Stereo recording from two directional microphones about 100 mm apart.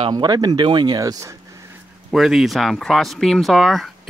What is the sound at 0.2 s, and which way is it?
Speech, 45° right (ahead or behind).